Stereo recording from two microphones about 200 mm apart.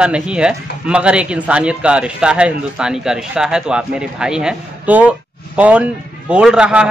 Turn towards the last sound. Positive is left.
turn(degrees=-5)  # may be behind; listen again after turning